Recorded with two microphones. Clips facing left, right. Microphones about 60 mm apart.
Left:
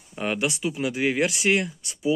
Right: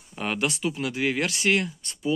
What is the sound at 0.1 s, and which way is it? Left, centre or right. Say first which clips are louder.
Speech: left 1 dB; centre.